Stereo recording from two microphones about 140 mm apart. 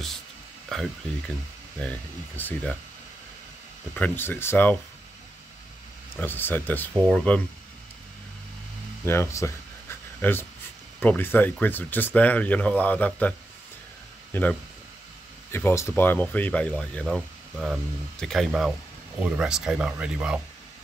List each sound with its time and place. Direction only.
0.7 s speech: centre (ahead or behind)
3.9 s speech: 15° left (ahead or behind)
6.1 s speech: 15° left (ahead or behind)
9.0 s a sound: 15° left (ahead or behind)
11.0 s speech: 10° left (ahead or behind)
14.3 s speech: 10° left (ahead or behind); by 20.3 s 10° right (ahead or behind)